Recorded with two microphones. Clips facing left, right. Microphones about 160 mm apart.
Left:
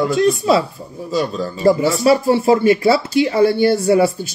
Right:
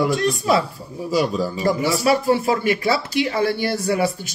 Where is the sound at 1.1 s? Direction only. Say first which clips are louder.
Even; 10° right (ahead or behind).